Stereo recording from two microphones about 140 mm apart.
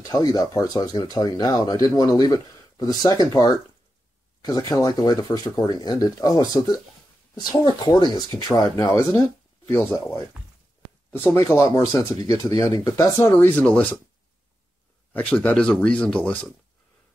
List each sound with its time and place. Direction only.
0.0 s speech: 25° left (ahead or behind)
15.1 s speech: 10° left (ahead or behind)